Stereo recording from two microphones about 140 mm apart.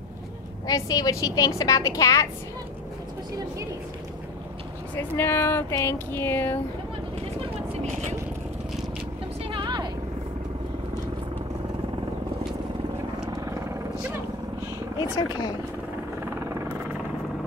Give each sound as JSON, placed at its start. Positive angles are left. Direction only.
{"t": 0.7, "sound": "a woman's voice", "side_deg": 25}
{"t": 4.9, "sound": "speech", "side_deg": 15}
{"t": 7.7, "sound": "vehicle", "side_deg": -50}
{"t": 9.4, "sound": "vehicle", "side_deg": -35}
{"t": 13.3, "sound": "vehicle", "side_deg": -20}
{"t": 15.0, "sound": "speech", "side_deg": 30}
{"t": 16.2, "sound": "vehicle", "side_deg": -20}